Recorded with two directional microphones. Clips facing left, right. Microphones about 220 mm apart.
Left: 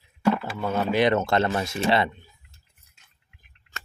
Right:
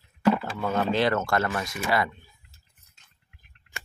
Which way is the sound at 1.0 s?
20° left (ahead or behind).